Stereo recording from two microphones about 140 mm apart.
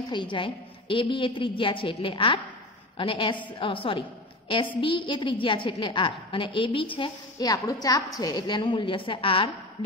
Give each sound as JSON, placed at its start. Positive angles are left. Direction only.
{"t": 0.1, "sound": "a woman's voice", "side_deg": 35}